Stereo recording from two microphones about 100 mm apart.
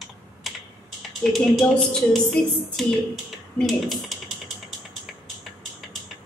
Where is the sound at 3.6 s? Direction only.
Centre (ahead or behind).